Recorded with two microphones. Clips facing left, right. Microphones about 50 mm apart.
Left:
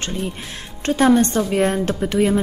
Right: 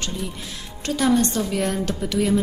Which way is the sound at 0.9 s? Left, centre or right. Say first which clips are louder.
Left 5 dB; left.